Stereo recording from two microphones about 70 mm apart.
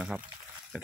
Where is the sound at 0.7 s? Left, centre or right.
Centre.